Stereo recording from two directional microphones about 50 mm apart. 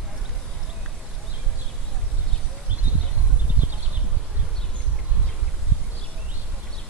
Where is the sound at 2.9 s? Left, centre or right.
Right.